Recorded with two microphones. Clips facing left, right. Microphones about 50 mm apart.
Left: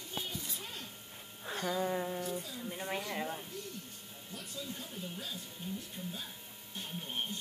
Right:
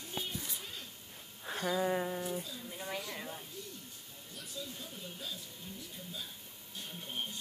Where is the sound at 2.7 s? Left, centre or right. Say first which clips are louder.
Left 3 dB; left.